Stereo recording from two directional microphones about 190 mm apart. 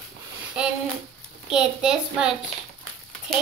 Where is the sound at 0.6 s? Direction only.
5° right (ahead or behind).